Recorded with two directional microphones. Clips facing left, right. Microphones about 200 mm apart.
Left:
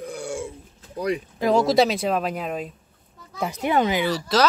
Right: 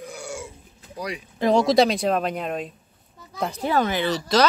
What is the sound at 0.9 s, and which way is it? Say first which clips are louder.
Speech: left 7 dB; 55° left (ahead or behind).